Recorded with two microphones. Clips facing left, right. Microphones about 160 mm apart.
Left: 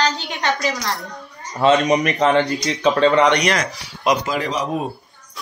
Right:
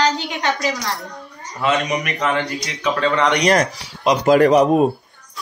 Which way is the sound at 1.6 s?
30° left (ahead or behind).